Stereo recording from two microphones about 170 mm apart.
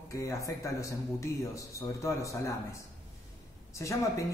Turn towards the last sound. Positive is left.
turn(degrees=15)  # may be behind; listen again after turning